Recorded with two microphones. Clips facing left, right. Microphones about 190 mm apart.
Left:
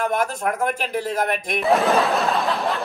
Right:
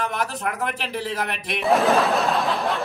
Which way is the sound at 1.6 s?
Centre (ahead or behind).